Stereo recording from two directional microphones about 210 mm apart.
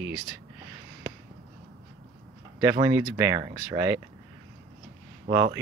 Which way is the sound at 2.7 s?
20° right (ahead or behind).